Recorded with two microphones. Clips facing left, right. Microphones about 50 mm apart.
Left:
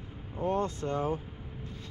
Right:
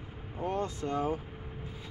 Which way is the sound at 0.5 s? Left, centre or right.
Left.